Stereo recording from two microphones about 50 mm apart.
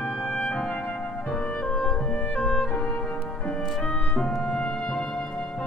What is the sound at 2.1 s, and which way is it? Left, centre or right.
Music, left.